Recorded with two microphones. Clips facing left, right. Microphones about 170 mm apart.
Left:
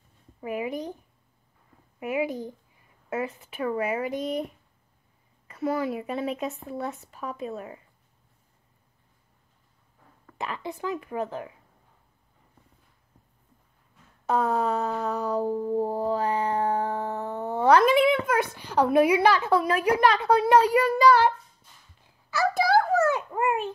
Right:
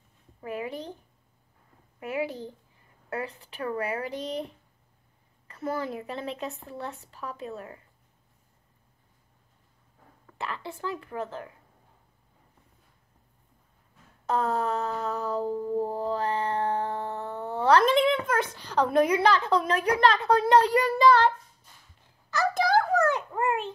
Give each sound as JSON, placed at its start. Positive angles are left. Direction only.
{"t": 0.4, "sound": "music", "side_deg": 15}
{"t": 2.0, "sound": "music", "side_deg": 15}
{"t": 5.8, "sound": "music", "side_deg": 15}
{"t": 10.3, "sound": "music", "side_deg": 15}
{"t": 14.3, "sound": "music", "side_deg": 15}
{"t": 22.3, "sound": "a sound", "side_deg": 5}